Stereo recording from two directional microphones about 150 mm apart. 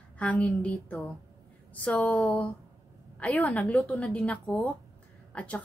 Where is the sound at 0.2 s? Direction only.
10° left (ahead or behind).